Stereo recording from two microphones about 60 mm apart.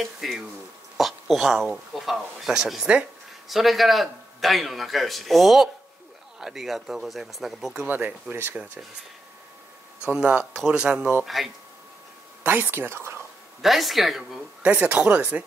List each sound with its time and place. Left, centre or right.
0.0 s a man's voice: centre
3.4 s a man's voice: centre
7.9 s speech: right
10.0 s speech: centre
11.2 s a man's voice: centre
12.4 s speech: right
13.6 s a man's voice: centre
14.6 s speech: centre